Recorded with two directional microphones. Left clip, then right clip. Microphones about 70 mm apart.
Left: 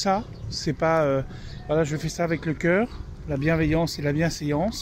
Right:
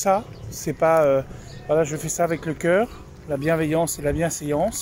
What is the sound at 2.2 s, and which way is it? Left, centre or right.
Speech, centre.